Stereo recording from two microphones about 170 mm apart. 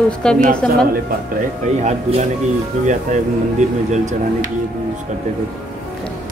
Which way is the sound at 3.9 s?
45° right (ahead or behind).